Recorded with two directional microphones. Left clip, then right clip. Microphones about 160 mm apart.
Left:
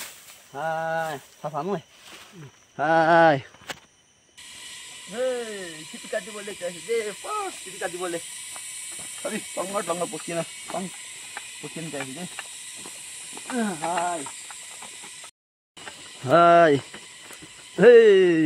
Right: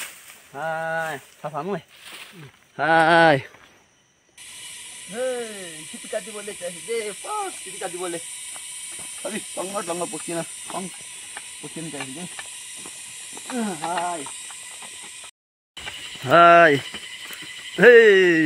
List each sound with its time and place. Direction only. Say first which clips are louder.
0.6 s speech: right 1 dB; 5° right (ahead or behind)
2.7 s speech: right 3 dB; 30° right (ahead or behind)
3.1 s speech: even; 75° right (ahead or behind)
5.1 s speech: even; centre (ahead or behind)
16.3 s speech: right 3 dB; 5° left (ahead or behind)